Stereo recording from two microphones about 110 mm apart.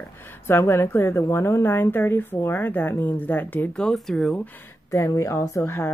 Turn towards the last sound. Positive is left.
turn(degrees=25)  # may be behind; listen again after turning